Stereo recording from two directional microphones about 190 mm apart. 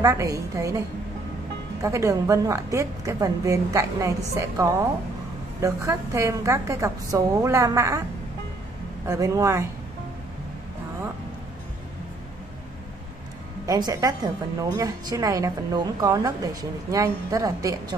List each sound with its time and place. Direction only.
0.0 s a woman's voice: 15° right (ahead or behind)
9.0 s a woman's voice: 15° right (ahead or behind)
13.7 s a woman's voice: 20° right (ahead or behind)